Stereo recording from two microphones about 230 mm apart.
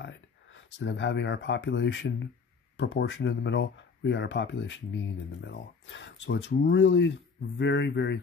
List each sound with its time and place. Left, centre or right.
0.0 s speech: left